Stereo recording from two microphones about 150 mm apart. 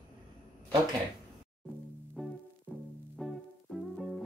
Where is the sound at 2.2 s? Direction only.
5° left (ahead or behind).